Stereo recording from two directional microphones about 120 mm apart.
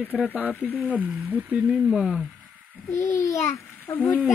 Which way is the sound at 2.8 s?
20° left (ahead or behind).